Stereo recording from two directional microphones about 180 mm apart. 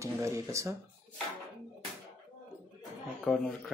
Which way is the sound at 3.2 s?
5° left (ahead or behind).